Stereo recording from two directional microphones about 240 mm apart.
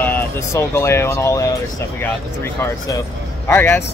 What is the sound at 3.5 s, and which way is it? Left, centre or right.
Speech, centre.